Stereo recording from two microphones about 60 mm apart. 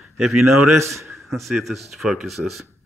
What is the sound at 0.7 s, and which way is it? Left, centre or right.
Speech, right.